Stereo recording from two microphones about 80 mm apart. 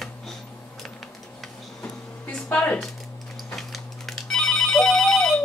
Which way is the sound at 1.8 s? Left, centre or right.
Centre.